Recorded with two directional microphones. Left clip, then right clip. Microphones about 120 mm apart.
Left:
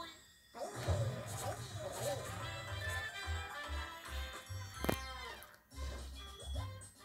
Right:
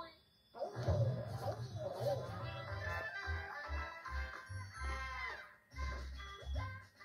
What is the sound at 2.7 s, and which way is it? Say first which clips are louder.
Music: right 1 dB; 35° left (ahead or behind).